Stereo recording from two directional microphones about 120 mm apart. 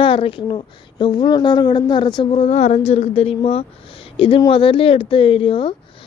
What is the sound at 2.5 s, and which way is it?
A woman's voice, 65° left (ahead or behind).